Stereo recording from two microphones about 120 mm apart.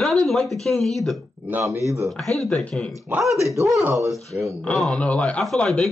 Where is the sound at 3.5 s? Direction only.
25° right (ahead or behind).